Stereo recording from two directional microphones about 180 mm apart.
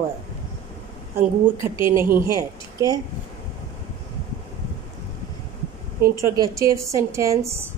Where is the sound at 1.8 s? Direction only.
15° right (ahead or behind).